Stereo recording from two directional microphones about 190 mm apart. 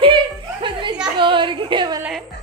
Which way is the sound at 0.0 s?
25° right (ahead or behind).